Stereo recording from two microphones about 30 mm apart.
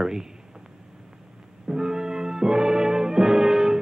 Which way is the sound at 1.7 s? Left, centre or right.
Right.